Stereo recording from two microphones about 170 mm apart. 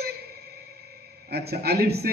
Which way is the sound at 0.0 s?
70° right (ahead or behind).